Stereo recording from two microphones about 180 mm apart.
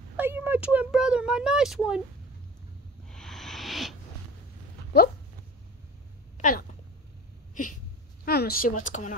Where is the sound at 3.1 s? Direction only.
Centre (ahead or behind).